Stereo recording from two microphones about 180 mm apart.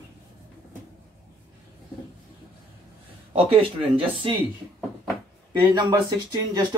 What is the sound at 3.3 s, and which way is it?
Speech, 30° right (ahead or behind).